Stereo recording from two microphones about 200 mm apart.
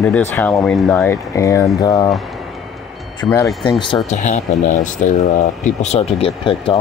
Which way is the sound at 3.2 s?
15° left (ahead or behind).